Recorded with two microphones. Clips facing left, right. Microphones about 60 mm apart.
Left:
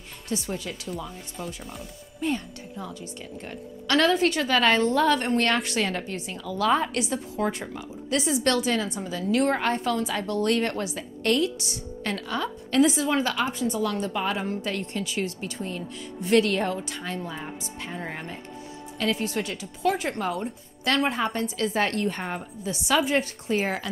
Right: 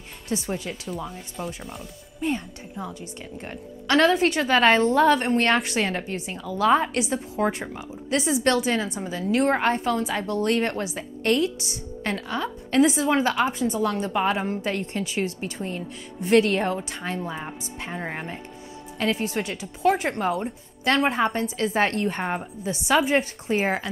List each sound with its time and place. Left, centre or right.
0.3 s a woman's voice: right
0.7 s speech: centre
2.2 s a woman's voice: right